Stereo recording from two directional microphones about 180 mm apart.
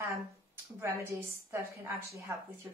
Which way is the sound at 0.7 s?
15° right (ahead or behind).